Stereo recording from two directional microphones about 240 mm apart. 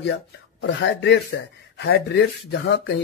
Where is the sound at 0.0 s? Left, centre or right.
Left.